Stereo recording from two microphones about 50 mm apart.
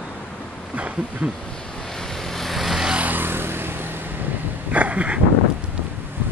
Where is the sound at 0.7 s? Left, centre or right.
Right.